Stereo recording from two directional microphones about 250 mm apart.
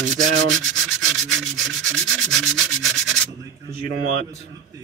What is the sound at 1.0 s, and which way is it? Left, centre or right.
Sanding, centre.